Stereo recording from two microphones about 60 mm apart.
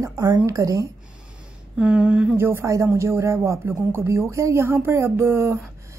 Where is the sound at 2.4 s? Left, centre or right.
Right.